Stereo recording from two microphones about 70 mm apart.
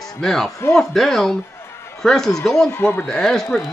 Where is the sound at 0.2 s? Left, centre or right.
Centre.